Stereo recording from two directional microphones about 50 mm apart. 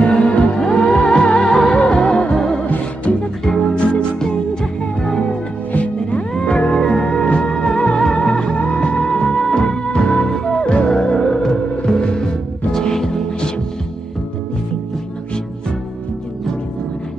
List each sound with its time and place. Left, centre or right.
0.0 s music: centre
2.6 s music: left
3.4 s music: centre
5.7 s music: left; by 13.5 s centre